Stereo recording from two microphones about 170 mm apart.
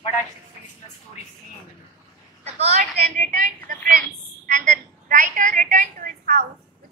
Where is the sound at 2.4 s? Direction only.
40° right (ahead or behind); by 6.4 s 55° right (ahead or behind).